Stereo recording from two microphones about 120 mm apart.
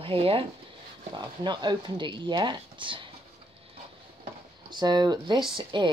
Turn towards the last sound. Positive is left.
turn(degrees=-40)  # may be behind; listen again after turning